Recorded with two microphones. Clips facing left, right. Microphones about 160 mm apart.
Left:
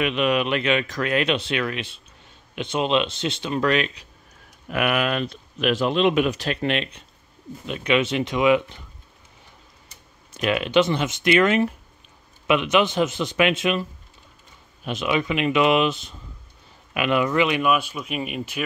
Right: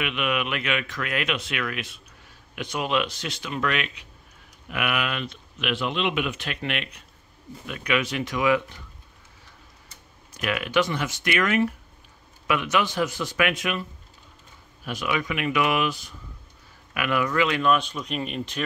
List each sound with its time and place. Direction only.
0.0 s speech: 35° left (ahead or behind)
10.3 s speech: 25° left (ahead or behind)
14.9 s speech: 25° left (ahead or behind); by 18.6 s 10° left (ahead or behind)